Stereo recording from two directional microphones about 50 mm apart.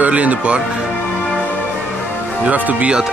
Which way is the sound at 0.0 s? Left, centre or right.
Right.